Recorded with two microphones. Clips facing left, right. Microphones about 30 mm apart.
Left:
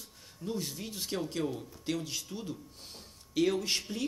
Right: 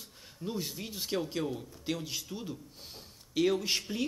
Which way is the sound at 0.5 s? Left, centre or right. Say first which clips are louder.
Even; centre.